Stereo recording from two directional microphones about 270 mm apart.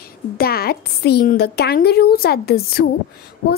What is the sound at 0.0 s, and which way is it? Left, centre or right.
A woman's voice, left.